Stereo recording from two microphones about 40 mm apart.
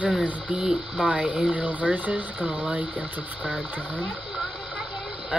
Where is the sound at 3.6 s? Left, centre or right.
Right.